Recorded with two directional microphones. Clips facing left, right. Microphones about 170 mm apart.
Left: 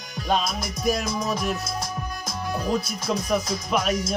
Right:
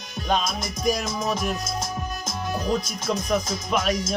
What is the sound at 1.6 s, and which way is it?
Music, 20° right (ahead or behind).